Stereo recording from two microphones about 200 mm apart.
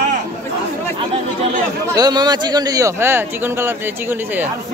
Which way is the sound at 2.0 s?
20° right (ahead or behind).